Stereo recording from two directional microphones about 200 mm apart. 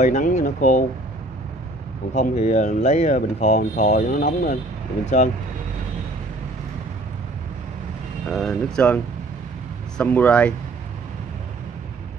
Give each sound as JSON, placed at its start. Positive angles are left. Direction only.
{"t": 0.0, "sound": "speech", "side_deg": 40}
{"t": 2.1, "sound": "speech", "side_deg": 35}
{"t": 8.3, "sound": "speech", "side_deg": 0}